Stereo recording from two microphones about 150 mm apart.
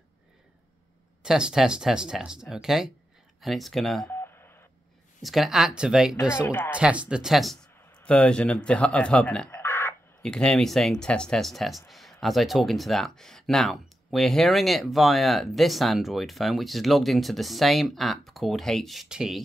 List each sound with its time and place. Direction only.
1.2 s speech: 5° right (ahead or behind)
4.1 s telephone dialing: 15° left (ahead or behind)
5.2 s speech: centre (ahead or behind)
6.4 s speech: 15° left (ahead or behind)
6.7 s speech: 10° right (ahead or behind); by 9.9 s 15° left (ahead or behind)
10.2 s speech: 5° left (ahead or behind)